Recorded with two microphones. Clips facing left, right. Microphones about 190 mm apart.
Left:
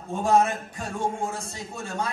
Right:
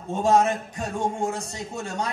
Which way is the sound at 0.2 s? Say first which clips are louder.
Right 1 dB; 15° right (ahead or behind).